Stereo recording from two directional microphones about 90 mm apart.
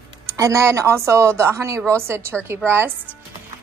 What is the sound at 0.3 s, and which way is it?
Speech, 40° right (ahead or behind).